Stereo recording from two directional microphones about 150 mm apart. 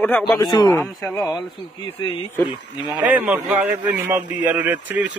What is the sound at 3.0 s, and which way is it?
A man's voice, 10° right (ahead or behind).